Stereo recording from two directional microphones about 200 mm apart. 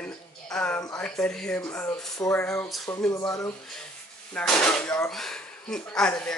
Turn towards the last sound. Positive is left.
turn(degrees=5)  # may be behind; listen again after turning